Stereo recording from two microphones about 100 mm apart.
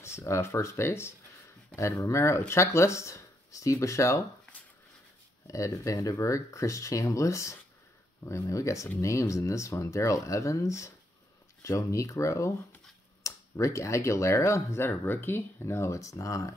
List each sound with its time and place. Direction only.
0.0 s speech: 30° left (ahead or behind)
5.5 s speech: 35° left (ahead or behind)